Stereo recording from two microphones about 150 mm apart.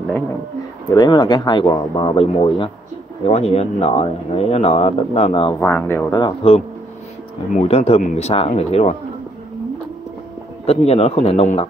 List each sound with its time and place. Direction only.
0.8 s speech: 30° left (ahead or behind)
5.6 s speech: 15° left (ahead or behind)
6.1 s speech: 35° left (ahead or behind)
10.6 s speech: 45° left (ahead or behind)